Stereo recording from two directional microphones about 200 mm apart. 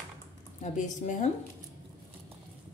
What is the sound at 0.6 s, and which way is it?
Speech, 40° left (ahead or behind).